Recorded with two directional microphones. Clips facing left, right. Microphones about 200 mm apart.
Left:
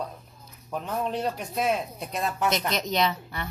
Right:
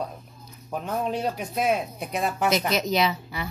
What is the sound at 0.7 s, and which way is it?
Speech, 5° right (ahead or behind).